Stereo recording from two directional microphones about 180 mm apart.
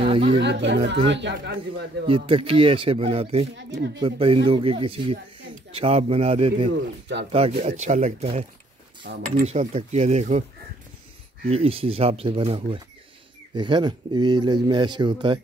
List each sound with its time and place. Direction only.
0.0 s chatter: 30° right (ahead or behind)
0.4 s speech: 75° right (ahead or behind)
2.0 s speech: 30° right (ahead or behind)
6.7 s speech: 75° right (ahead or behind)
7.5 s speech: 40° right (ahead or behind)
9.0 s speech: 70° right (ahead or behind)
9.5 s speech: 35° right (ahead or behind)
11.4 s speech: 35° right (ahead or behind)